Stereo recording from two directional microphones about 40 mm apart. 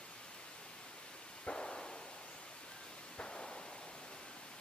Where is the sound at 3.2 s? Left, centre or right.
Left.